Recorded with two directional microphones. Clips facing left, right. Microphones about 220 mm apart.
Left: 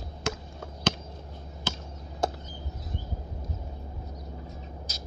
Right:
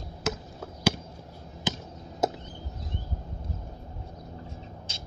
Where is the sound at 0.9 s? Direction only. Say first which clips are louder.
Right 3 dB; 10° right (ahead or behind).